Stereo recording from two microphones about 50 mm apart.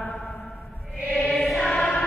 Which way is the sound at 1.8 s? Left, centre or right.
Left.